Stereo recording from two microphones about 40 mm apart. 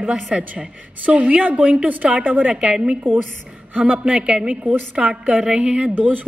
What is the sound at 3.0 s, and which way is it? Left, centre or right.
Speech, right.